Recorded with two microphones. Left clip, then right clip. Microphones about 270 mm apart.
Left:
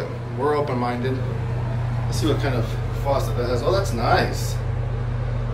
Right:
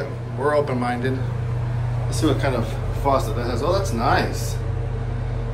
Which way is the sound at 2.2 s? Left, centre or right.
Centre.